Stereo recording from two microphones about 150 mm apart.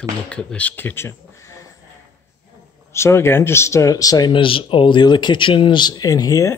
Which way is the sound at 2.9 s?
15° left (ahead or behind).